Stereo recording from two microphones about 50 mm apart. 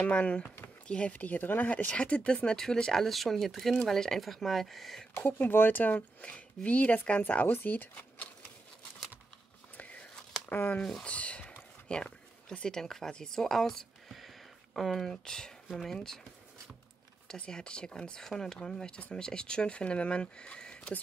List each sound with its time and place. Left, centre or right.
0.0 s speech: left; by 5.0 s centre
5.5 s speech: left
6.2 s speech: left
7.4 s speech: left
9.8 s biting: left
10.5 s speech: left
10.8 s speech: centre
11.1 s speech: left; by 16.2 s centre
17.5 s speech: centre